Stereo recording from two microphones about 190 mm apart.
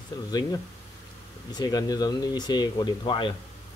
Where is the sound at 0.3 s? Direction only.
20° left (ahead or behind).